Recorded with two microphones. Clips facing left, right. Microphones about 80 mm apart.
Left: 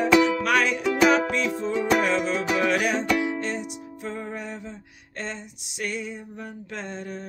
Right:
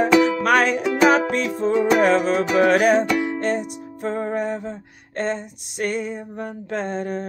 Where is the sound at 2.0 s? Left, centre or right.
Right.